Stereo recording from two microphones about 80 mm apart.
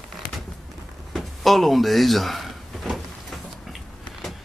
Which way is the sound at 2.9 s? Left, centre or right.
Centre.